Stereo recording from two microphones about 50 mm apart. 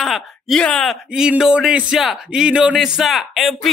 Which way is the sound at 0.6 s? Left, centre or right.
Centre.